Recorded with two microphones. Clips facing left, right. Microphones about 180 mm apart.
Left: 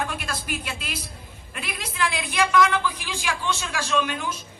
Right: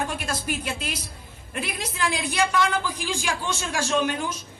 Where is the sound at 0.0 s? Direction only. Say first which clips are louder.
Right 2 dB; 45° right (ahead or behind).